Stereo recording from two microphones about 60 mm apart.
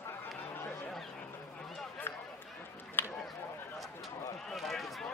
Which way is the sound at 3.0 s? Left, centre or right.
Left.